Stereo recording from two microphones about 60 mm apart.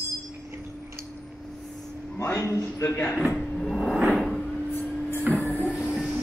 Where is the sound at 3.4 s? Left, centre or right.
Centre.